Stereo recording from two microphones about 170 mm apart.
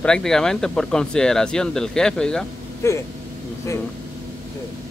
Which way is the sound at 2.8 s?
15° left (ahead or behind).